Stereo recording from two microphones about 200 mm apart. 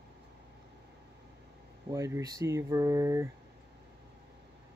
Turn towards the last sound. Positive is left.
turn(degrees=-15)  # may be behind; listen again after turning